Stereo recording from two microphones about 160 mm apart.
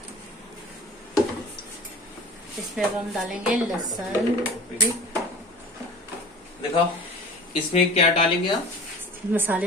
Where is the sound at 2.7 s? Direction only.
Centre (ahead or behind).